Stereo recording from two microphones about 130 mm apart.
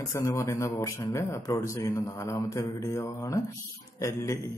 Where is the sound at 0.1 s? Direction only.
25° left (ahead or behind).